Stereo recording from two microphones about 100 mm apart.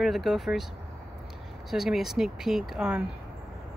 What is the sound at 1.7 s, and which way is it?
Speech, 5° right (ahead or behind).